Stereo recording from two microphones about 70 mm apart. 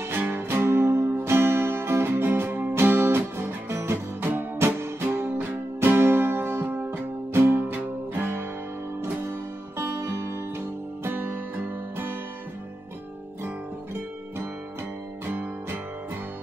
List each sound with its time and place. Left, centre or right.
0.0 s music: right
15.2 s music: right